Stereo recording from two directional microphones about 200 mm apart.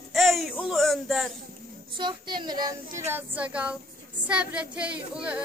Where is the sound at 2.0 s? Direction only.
25° right (ahead or behind).